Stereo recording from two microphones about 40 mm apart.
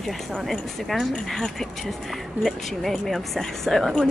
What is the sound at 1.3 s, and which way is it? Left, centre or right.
Speech, centre.